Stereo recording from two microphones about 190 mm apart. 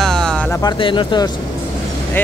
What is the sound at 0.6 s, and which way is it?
Speech, 25° left (ahead or behind).